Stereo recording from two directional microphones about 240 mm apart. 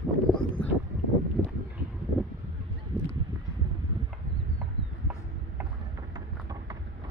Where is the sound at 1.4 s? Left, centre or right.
Centre.